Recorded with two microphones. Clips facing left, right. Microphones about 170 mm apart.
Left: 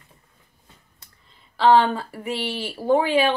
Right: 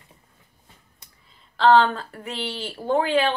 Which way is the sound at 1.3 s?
5° left (ahead or behind).